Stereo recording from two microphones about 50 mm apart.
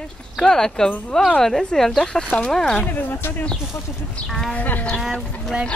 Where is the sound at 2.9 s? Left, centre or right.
Left.